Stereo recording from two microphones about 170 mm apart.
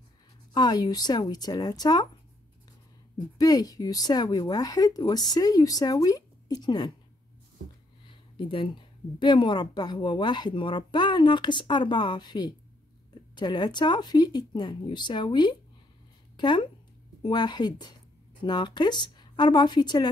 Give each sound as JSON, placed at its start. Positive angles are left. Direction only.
{"t": 0.6, "sound": "a woman's voice", "side_deg": 25}
{"t": 3.3, "sound": "a woman's voice", "side_deg": 20}
{"t": 8.1, "sound": "a woman's voice", "side_deg": 30}